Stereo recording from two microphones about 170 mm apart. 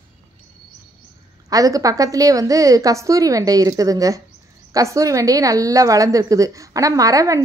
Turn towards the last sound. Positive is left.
turn(degrees=-20)  # may be behind; listen again after turning